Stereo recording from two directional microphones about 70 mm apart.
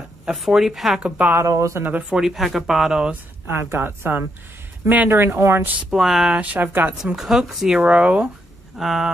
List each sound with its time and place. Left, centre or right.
0.5 s speech: centre
1.0 s speech: centre
1.4 s speech: right
1.8 s speech: right
2.1 s speech: centre
3.4 s speech: right
5.9 s speech: centre
6.3 s speech: right
7.2 s speech: centre
7.7 s speech: centre
8.7 s speech: centre